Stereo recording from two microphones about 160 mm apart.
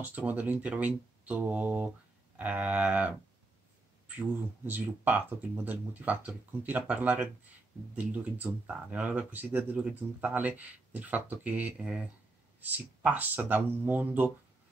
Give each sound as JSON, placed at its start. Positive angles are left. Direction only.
{"t": 0.0, "sound": "speech", "side_deg": -10}
{"t": 4.6, "sound": "speech", "side_deg": -10}